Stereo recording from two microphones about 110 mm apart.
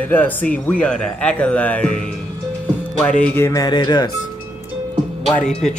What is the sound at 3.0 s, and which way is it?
Speech, 10° left (ahead or behind).